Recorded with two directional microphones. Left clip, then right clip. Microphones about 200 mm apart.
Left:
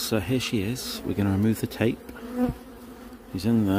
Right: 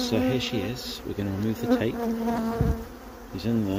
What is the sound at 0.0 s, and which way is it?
Speech, 40° left (ahead or behind).